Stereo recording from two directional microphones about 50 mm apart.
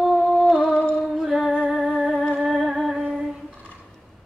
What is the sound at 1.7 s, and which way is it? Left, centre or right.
Music, centre.